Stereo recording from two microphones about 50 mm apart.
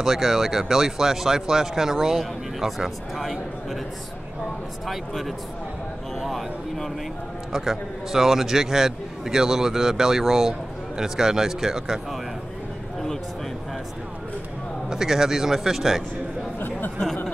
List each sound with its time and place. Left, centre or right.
0.0 s speech: centre
4.8 s speech: centre
6.1 s a sound: centre
7.5 s speech: centre
14.9 s speech: centre
16.5 s chatter: left